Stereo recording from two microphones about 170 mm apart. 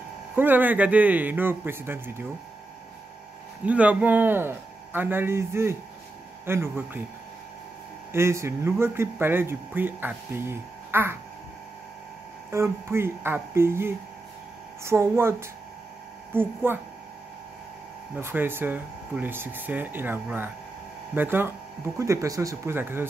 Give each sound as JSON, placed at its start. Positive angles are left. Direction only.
{"t": 0.4, "sound": "speech", "side_deg": -10}
{"t": 3.6, "sound": "speech", "side_deg": -10}
{"t": 8.1, "sound": "speech", "side_deg": -15}
{"t": 12.4, "sound": "speech", "side_deg": -15}
{"t": 16.3, "sound": "speech", "side_deg": -10}
{"t": 18.1, "sound": "speech", "side_deg": -10}